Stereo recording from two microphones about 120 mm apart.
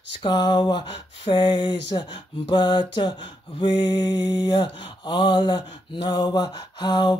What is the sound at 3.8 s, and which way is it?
Mantra, 15° right (ahead or behind).